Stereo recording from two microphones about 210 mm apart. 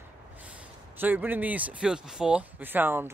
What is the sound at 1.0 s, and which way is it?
Speech, 10° right (ahead or behind).